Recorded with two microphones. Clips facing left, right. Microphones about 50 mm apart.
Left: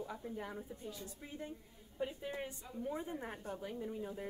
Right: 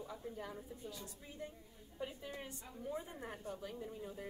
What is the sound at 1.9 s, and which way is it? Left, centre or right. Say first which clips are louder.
A woman's voice: left 5 dB; left.